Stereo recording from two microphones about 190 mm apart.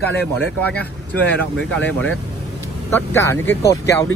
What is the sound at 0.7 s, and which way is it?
Speech, 10° left (ahead or behind).